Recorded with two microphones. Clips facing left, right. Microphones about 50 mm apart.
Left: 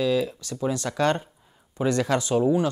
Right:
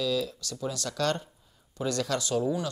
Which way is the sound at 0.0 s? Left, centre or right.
Left.